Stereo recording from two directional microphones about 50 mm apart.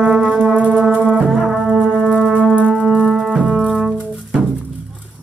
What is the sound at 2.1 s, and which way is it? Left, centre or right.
Wind instrument, centre.